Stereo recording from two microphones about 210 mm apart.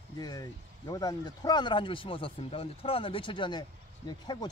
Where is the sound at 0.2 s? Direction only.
20° left (ahead or behind).